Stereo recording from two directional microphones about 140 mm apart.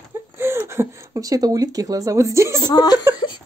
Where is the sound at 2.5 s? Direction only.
30° left (ahead or behind).